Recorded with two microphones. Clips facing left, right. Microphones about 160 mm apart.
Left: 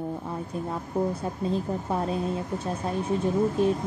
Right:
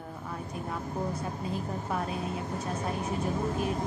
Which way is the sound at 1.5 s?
30° left (ahead or behind).